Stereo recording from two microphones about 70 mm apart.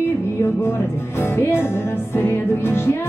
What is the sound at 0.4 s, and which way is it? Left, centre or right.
Music, left.